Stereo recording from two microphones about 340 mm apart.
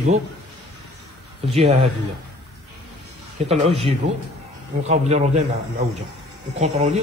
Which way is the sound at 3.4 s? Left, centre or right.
Centre.